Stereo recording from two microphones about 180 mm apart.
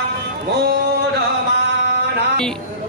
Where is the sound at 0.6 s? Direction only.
65° right (ahead or behind).